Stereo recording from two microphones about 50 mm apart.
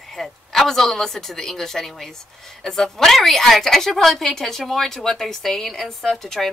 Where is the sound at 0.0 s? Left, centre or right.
Centre.